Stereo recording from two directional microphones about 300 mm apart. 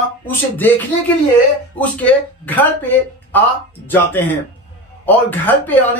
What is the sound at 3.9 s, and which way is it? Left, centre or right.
Music, centre.